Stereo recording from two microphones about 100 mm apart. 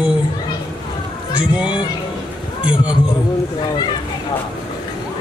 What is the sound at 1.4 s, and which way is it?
Speech, 10° right (ahead or behind).